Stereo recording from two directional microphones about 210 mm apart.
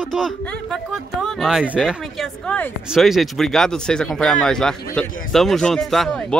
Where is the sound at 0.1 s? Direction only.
Centre (ahead or behind).